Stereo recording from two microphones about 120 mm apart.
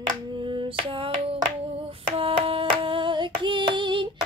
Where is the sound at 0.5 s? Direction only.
45° right (ahead or behind).